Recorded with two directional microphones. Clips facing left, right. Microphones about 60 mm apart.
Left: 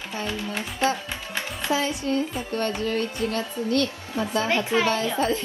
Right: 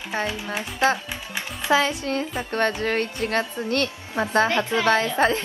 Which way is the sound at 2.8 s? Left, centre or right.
Right.